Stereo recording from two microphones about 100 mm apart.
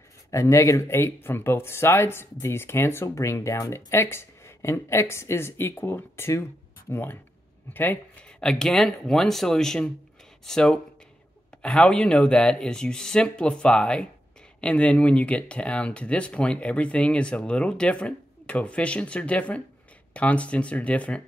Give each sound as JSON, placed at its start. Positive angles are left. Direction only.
{"t": 0.3, "sound": "speech", "side_deg": 30}
{"t": 8.4, "sound": "speech", "side_deg": 5}